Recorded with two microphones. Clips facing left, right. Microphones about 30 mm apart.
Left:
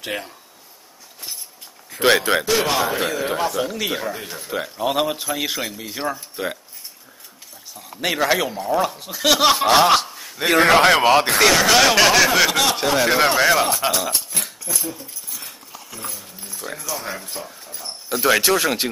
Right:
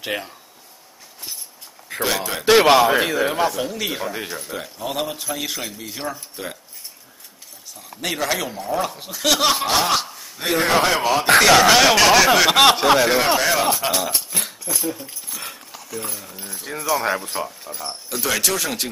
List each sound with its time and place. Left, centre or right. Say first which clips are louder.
0.0 s speech: right 1 dB; centre
2.0 s a man's voice: left 7 dB; left
2.4 s speech: right 7 dB; right
3.0 s a man's voice: right 3 dB; centre
3.3 s speech: right 1 dB; centre
4.5 s a man's voice: left 5 dB; centre
7.7 s a man's voice: left 3 dB; centre
10.5 s a man's voice: left 4 dB; left
11.5 s speech: right 2 dB; centre
12.4 s speech: right 6 dB; right
13.0 s a man's voice: left 1 dB; centre
16.2 s speech: right 3 dB; right
16.6 s speech: right 7 dB; right
18.2 s a man's voice: left 5 dB; left